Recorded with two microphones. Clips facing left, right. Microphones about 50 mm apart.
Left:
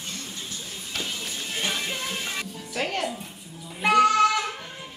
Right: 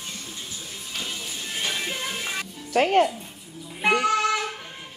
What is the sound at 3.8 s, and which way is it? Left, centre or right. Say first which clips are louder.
Child singing: left 3 dB; centre.